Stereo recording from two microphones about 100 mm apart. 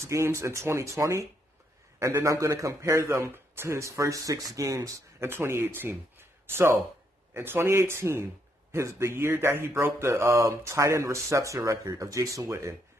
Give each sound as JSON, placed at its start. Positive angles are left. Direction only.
{"t": 0.0, "sound": "a man's voice", "side_deg": -30}